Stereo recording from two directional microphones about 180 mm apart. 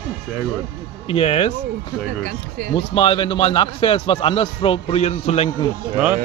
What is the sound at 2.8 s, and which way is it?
A man's voice, 30° left (ahead or behind).